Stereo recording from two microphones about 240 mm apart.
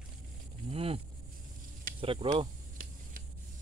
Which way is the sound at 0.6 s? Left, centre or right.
Right.